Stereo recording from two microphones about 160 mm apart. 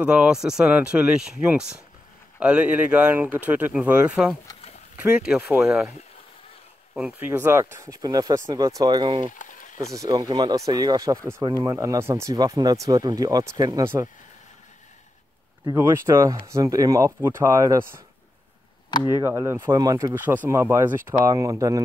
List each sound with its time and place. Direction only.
0.0 s speech: 5° right (ahead or behind)
6.9 s speech: 5° right (ahead or behind); by 9.3 s 30° right (ahead or behind)
9.3 s a sound: 55° left (ahead or behind)
9.9 s speech: 25° right (ahead or behind)
15.6 s speech: 15° right (ahead or behind)
19.0 s speech: 15° right (ahead or behind)